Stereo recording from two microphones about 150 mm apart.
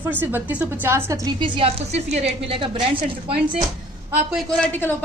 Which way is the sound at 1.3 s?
35° right (ahead or behind).